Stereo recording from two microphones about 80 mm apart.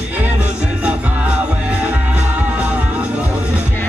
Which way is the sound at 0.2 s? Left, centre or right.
Centre.